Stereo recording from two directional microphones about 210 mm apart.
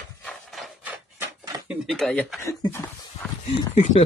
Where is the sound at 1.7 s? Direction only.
5° right (ahead or behind); by 2.9 s 15° left (ahead or behind).